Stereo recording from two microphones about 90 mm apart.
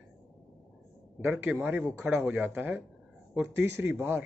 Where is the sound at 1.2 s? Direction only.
25° right (ahead or behind).